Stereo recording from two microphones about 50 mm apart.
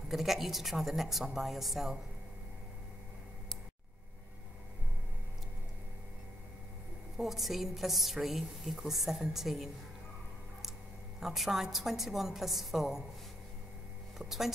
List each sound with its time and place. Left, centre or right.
0.1 s a woman's voice: centre
7.2 s a woman's voice: centre
11.1 s a woman's voice: centre
14.1 s speech: centre